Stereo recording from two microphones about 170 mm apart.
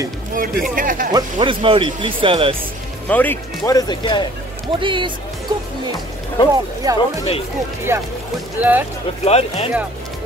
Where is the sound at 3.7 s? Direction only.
25° left (ahead or behind).